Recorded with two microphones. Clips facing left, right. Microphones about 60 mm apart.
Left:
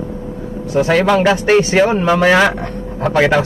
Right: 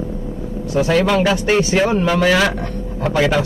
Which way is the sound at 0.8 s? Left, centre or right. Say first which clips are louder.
Left 3 dB; left.